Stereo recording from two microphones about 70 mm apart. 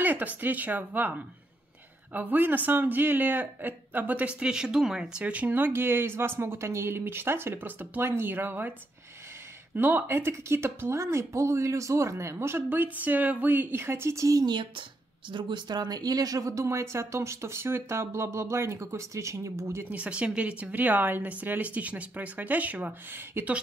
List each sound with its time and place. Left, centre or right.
0.0 s speech: right
9.8 s speech: right
15.5 s speech: right
19.6 s speech: right
19.9 s speech: centre